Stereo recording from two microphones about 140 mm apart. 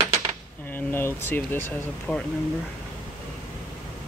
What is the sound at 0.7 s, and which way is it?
Speech, 15° left (ahead or behind).